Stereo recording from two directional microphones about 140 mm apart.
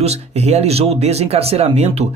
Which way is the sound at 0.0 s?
50° right (ahead or behind).